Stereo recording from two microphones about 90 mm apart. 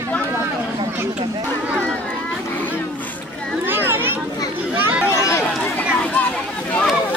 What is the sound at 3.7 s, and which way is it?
Children playing, 25° right (ahead or behind).